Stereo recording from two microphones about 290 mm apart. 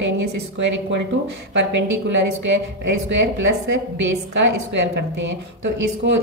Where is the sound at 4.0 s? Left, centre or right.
Right.